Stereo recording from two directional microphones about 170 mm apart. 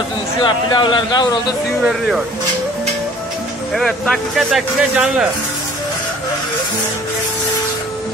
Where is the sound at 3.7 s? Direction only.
5° left (ahead or behind).